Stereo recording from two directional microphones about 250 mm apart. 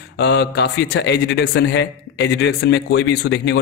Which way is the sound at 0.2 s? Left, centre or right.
Left.